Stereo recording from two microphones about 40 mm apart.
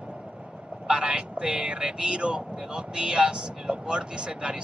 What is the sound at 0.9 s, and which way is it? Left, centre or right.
Speech, right.